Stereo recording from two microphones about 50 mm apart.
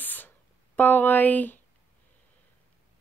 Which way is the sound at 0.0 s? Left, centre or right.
Left.